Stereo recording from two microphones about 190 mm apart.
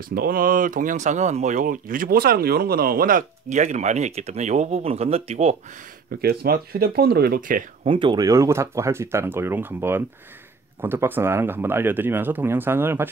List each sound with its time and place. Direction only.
0.1 s speech: 50° right (ahead or behind); by 5.6 s 35° right (ahead or behind)
6.2 s speech: 50° right (ahead or behind)
7.8 s speech: 25° right (ahead or behind)